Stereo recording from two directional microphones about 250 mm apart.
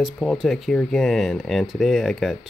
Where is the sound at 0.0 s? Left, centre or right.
Centre.